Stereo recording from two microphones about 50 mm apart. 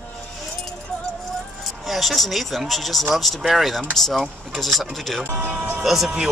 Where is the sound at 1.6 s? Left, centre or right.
Centre.